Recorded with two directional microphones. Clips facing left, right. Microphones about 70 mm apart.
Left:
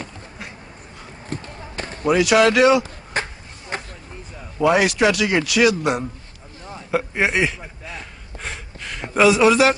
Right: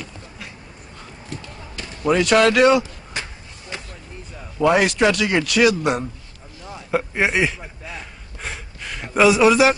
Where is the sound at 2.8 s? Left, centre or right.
Left.